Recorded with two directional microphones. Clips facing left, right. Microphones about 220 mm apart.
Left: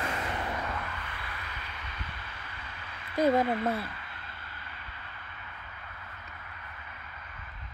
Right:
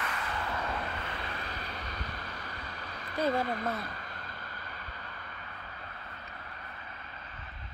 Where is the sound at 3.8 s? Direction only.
40° right (ahead or behind).